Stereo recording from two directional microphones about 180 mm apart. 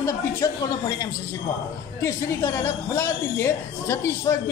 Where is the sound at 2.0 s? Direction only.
15° left (ahead or behind).